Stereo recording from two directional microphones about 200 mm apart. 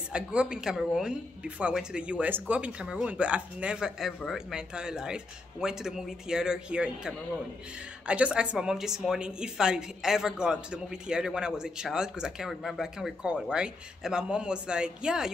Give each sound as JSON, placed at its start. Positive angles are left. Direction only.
{"t": 0.1, "sound": "speech", "side_deg": -5}